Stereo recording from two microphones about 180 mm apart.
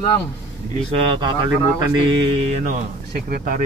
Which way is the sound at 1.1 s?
25° right (ahead or behind).